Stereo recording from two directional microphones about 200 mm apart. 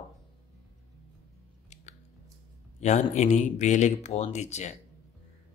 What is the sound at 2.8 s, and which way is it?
Speech, 35° left (ahead or behind).